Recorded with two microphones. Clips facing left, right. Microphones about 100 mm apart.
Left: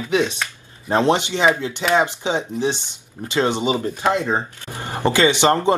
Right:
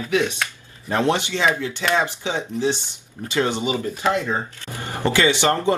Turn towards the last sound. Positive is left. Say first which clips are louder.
# left 3 dB
turn(degrees=20)  # may be behind; listen again after turning